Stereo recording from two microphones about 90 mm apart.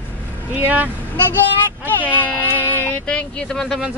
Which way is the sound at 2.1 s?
20° left (ahead or behind).